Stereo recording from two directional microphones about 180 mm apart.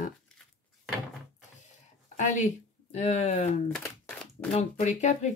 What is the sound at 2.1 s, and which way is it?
Speech, 45° left (ahead or behind).